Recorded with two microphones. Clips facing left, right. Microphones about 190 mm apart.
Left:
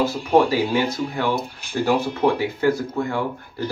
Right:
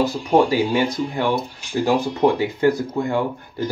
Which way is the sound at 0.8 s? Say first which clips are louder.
Right 2 dB; 15° right (ahead or behind).